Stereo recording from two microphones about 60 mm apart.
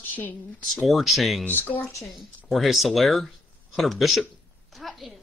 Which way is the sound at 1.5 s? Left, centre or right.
Left.